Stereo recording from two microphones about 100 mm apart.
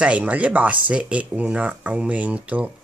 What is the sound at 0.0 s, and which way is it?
Speech, 15° right (ahead or behind).